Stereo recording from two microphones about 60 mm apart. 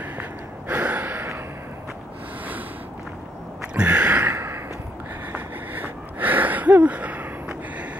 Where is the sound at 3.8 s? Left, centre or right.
Right.